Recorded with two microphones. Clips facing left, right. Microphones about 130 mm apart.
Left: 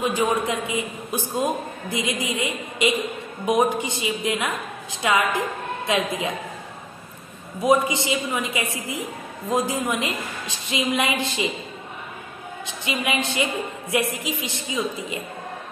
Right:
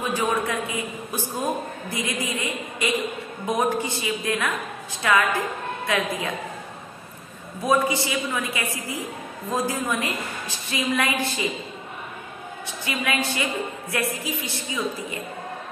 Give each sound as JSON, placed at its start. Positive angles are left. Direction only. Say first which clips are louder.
{"t": 0.0, "sound": "a man's voice", "louder": "left 2 dB", "side_deg": 20}
{"t": 7.6, "sound": "a man's voice", "louder": "left 2 dB", "side_deg": 20}
{"t": 12.6, "sound": "a man's voice", "louder": "left 1 dB", "side_deg": 20}